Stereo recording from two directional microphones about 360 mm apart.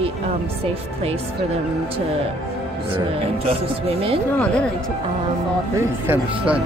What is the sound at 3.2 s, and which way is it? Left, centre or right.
Speech, centre.